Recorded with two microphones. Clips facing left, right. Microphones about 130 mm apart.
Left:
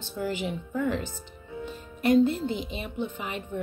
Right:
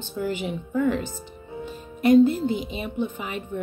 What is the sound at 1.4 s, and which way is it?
Music, 25° right (ahead or behind).